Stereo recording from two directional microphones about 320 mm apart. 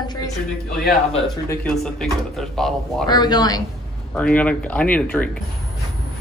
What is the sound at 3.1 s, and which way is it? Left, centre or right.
A woman's voice, centre.